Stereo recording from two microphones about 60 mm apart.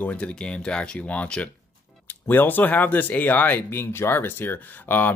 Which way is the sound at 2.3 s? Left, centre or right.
Left.